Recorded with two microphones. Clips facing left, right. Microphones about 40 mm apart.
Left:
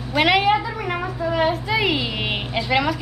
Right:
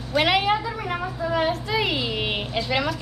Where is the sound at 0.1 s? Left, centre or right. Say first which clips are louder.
Left 3 dB; centre.